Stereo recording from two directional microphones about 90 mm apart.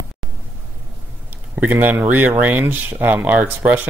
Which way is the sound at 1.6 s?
20° right (ahead or behind).